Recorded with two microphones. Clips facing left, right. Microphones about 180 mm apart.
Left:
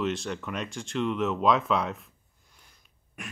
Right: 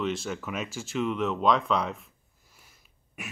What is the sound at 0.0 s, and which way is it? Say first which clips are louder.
Speech: even; centre (ahead or behind).